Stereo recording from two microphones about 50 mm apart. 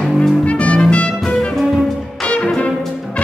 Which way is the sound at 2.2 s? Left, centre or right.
Left.